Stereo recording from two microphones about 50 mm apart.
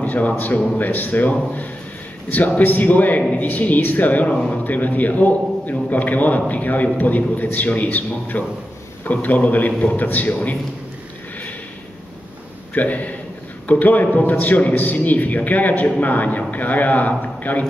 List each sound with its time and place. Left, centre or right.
0.0 s a sound: left
0.7 s a man's voice: left
2.3 s a man's voice: left
4.3 s speech: centre
4.6 s a man's voice: left
9.9 s a man's voice: left
12.7 s a man's voice: left